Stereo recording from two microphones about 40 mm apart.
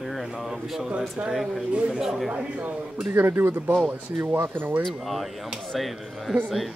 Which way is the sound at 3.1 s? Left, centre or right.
Right.